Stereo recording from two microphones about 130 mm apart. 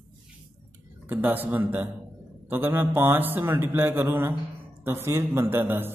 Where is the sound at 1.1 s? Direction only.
15° right (ahead or behind).